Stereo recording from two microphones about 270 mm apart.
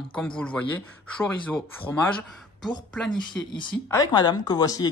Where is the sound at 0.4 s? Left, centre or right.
Centre.